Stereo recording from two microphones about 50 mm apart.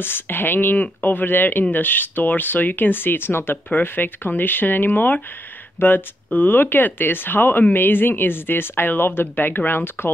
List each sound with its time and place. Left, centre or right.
0.0 s speech: left